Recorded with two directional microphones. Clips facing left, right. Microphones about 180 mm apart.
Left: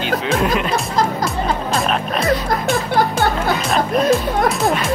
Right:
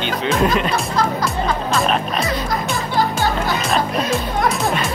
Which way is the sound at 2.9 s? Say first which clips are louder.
Right 1 dB; 55° left (ahead or behind).